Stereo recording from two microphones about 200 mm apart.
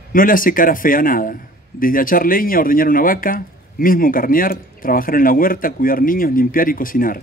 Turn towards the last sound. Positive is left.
turn(degrees=45)  # may be behind; listen again after turning